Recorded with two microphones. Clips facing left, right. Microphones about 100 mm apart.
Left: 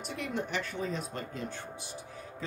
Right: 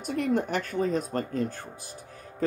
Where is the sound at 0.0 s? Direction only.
45° right (ahead or behind).